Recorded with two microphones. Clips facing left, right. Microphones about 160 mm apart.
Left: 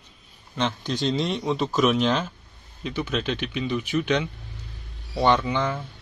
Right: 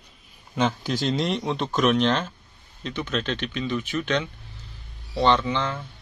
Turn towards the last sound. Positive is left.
turn(degrees=10)  # may be behind; listen again after turning